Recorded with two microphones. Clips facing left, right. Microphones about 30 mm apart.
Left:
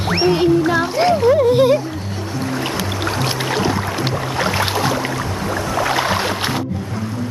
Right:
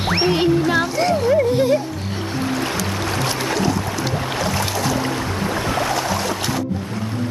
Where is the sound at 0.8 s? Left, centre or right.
Left.